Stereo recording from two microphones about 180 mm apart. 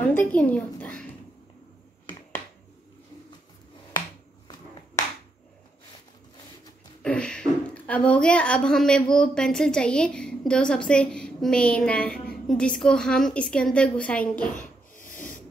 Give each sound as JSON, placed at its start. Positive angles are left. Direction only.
{"t": 0.3, "sound": "a woman's voice", "side_deg": 5}
{"t": 7.0, "sound": "a sound", "side_deg": 5}
{"t": 9.1, "sound": "a woman's voice", "side_deg": 5}
{"t": 14.6, "sound": "snort", "side_deg": 45}